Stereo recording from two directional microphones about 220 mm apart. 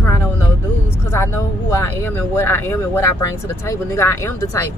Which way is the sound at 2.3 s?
10° left (ahead or behind).